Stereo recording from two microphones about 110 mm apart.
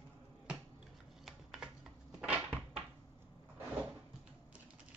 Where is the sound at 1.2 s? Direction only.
Centre (ahead or behind).